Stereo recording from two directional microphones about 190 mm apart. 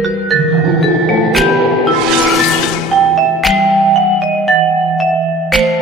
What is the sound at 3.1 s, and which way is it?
Music, centre (ahead or behind).